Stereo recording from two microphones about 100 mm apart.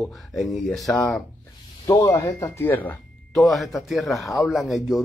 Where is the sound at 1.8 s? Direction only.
35° left (ahead or behind); by 3.0 s 20° left (ahead or behind).